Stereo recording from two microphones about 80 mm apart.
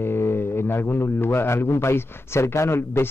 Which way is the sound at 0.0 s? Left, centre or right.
Left.